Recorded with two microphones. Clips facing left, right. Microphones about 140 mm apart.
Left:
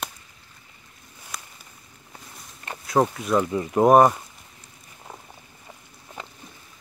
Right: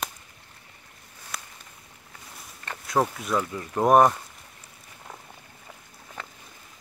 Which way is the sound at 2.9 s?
Centre (ahead or behind).